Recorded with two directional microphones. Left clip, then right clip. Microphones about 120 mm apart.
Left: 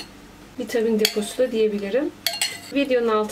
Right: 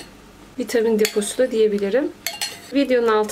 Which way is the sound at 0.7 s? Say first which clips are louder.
Right 2 dB; 40° right (ahead or behind).